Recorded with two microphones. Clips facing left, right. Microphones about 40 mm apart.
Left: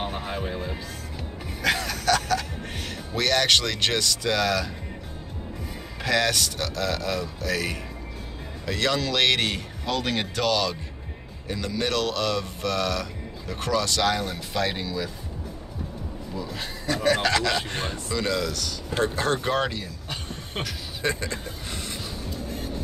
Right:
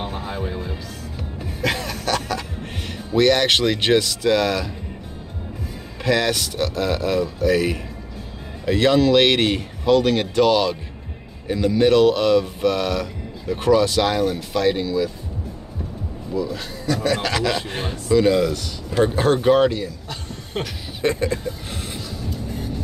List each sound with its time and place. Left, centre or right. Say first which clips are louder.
0.0 s music: right 2 dB; centre
1.6 s a sound: right 1 dB; centre
3.1 s speech: right 6 dB; centre
6.0 s speech: right 3 dB; centre
14.2 s speech: right 8 dB; centre
16.8 s speech: right 2 dB; left
17.2 s speech: right 1 dB; centre
18.5 s speech: right 4 dB; right
19.0 s speech: right 9 dB; centre
21.0 s speech: right 7 dB; centre